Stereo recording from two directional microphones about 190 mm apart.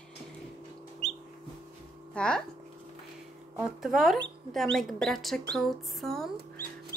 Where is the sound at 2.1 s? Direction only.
5° left (ahead or behind).